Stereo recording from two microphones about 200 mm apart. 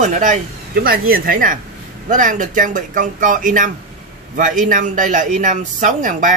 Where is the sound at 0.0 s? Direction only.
40° right (ahead or behind).